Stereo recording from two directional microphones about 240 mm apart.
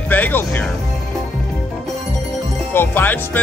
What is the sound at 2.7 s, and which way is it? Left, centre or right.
Speech, centre.